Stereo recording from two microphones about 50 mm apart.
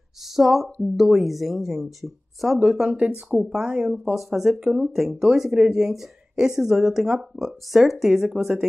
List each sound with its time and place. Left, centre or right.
0.4 s speech: centre
2.9 s speech: right
3.4 s speech: centre